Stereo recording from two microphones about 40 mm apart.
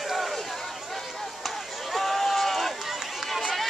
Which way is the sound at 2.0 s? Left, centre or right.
Centre.